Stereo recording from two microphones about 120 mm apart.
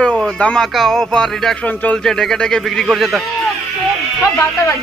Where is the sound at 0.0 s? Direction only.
5° left (ahead or behind).